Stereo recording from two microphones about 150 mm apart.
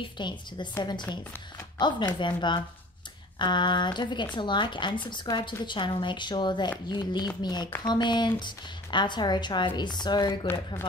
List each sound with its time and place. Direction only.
0.2 s a woman's voice: 30° left (ahead or behind)
10.4 s speech: 15° left (ahead or behind)